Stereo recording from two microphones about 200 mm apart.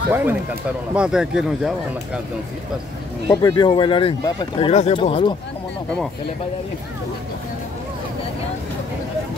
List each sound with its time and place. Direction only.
0.1 s a man's voice: 10° right (ahead or behind)
3.3 s speech: 20° left (ahead or behind)